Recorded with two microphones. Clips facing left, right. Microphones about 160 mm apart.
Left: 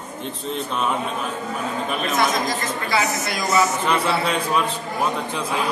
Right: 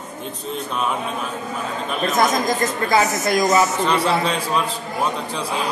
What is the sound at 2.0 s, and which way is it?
A man's voice, 45° right (ahead or behind).